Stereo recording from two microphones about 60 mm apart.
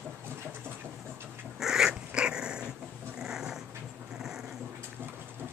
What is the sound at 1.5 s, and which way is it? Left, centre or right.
Dog, centre.